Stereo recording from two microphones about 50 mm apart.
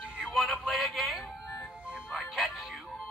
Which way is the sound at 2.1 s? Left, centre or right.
Centre.